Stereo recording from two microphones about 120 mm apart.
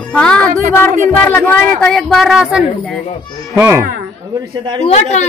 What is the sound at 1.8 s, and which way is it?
Speech, 5° left (ahead or behind).